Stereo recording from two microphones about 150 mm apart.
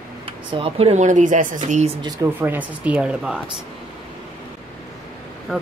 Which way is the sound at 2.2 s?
10° right (ahead or behind).